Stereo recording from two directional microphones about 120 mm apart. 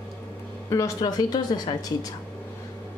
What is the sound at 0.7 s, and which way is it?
A woman's voice, 30° left (ahead or behind).